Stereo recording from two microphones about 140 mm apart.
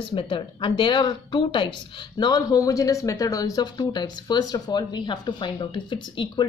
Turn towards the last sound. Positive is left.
turn(degrees=35)  # may be behind; listen again after turning